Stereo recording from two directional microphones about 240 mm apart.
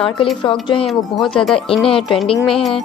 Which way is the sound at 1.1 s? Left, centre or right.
Centre.